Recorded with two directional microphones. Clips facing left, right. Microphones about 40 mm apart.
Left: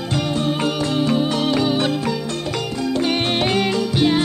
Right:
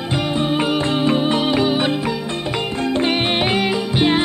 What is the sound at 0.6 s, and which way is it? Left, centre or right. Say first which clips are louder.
Music: right 2 dB; centre.